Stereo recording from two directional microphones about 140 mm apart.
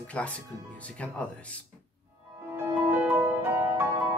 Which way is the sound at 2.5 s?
15° right (ahead or behind).